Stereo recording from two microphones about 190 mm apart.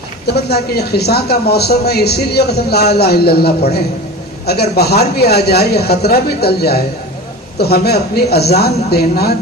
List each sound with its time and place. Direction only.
0.3 s a man's voice: 60° left (ahead or behind)